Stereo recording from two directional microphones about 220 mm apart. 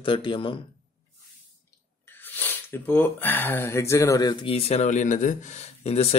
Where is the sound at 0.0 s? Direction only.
20° left (ahead or behind).